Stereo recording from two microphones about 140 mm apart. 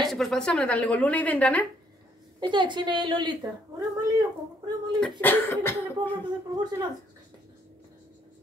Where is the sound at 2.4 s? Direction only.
35° right (ahead or behind).